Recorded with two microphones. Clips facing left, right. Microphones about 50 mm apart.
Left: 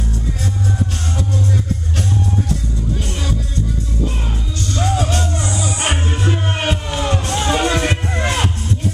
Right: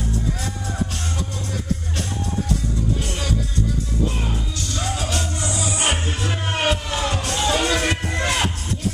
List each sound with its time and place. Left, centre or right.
4.7 s music: left